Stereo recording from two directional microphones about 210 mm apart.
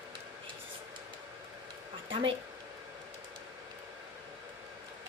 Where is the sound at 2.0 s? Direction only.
25° right (ahead or behind).